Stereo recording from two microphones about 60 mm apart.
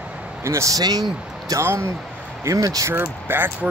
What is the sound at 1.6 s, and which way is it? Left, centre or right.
Speech, right.